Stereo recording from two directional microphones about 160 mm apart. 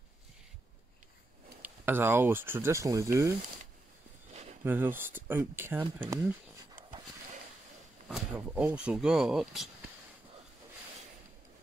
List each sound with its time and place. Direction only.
1.6 s speech: 15° right (ahead or behind)
4.3 s a sound: 45° right (ahead or behind)
4.6 s speech: 15° right (ahead or behind)
8.1 s speech: 10° right (ahead or behind)